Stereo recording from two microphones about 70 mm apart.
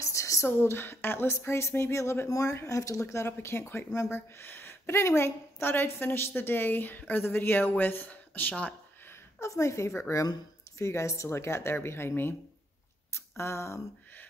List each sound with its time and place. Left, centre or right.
0.0 s speech: left
2.2 s a woman's voice: left
9.4 s a woman's voice: left
13.4 s a woman's voice: left